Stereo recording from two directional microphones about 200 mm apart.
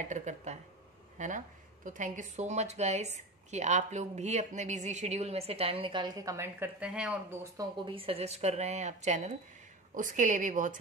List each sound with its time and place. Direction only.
0.1 s a woman's voice: 35° right (ahead or behind); by 7.3 s 5° right (ahead or behind)
7.5 s a woman's voice: 25° right (ahead or behind); by 10.8 s 40° right (ahead or behind)